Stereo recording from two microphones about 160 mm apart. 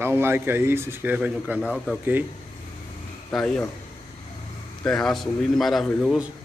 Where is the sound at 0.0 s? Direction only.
15° right (ahead or behind).